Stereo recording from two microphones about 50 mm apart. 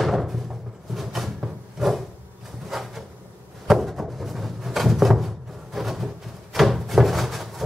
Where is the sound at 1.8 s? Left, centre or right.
Centre.